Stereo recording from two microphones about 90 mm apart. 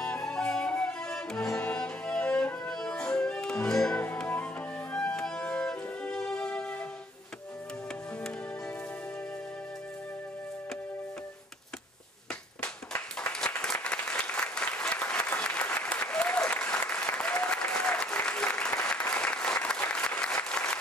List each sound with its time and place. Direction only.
0.0 s music: 10° left (ahead or behind)
13.2 s applause: 10° left (ahead or behind)